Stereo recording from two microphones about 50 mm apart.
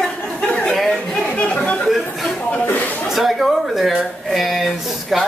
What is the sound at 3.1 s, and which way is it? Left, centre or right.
A man's voice, centre.